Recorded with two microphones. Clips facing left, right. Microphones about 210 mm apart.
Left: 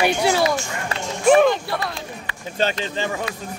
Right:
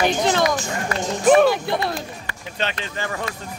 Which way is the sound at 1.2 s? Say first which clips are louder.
Even; 5° right (ahead or behind).